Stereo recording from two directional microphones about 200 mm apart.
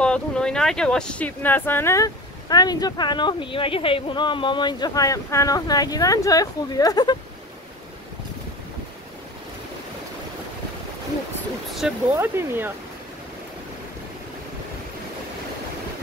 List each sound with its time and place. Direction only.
0.0 s speech: 5° left (ahead or behind)
12.1 s speech: 10° right (ahead or behind)